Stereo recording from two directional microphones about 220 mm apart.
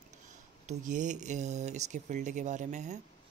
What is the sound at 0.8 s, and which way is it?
Mantra, 35° right (ahead or behind).